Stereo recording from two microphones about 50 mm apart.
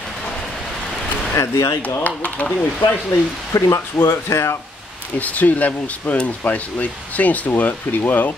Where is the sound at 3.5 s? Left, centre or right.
Left.